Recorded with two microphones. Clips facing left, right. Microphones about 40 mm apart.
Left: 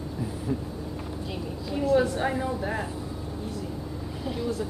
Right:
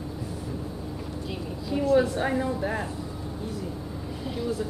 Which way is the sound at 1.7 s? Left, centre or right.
Centre.